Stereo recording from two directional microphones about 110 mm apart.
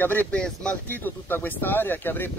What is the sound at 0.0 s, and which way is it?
Speech, 20° left (ahead or behind).